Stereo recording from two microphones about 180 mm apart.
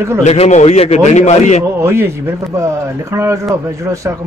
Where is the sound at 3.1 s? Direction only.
15° right (ahead or behind).